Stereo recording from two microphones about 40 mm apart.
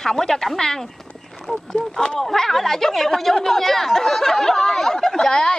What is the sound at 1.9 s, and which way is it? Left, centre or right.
Speech, centre.